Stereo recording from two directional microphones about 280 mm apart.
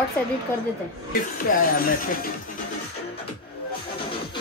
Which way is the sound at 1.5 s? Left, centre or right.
Left.